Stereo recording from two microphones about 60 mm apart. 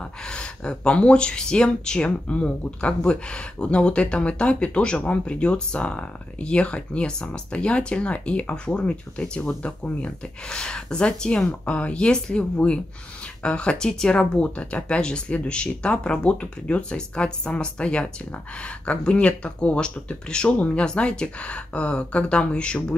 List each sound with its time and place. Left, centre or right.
0.3 s speech: centre